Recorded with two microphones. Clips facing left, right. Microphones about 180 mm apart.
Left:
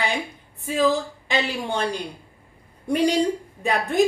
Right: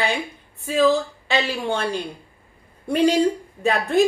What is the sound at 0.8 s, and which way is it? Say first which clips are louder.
A woman's voice: right 3 dB; 15° left (ahead or behind).